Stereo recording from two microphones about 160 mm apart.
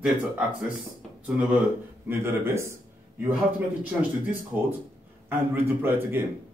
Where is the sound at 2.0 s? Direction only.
15° right (ahead or behind).